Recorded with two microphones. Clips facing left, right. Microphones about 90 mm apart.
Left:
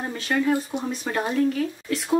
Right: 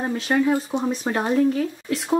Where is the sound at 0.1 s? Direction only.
20° right (ahead or behind).